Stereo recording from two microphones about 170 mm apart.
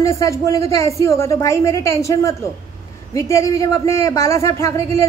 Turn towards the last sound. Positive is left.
turn(degrees=15)  # may be behind; listen again after turning